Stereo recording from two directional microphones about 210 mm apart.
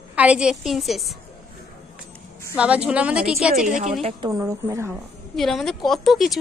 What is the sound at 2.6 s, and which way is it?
Speech, 5° right (ahead or behind).